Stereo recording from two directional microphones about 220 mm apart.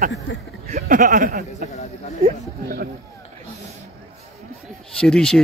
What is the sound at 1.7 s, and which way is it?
Speech, 30° left (ahead or behind).